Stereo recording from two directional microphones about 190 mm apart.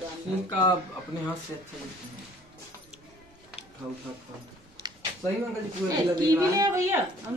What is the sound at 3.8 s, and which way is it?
Speech, 10° right (ahead or behind).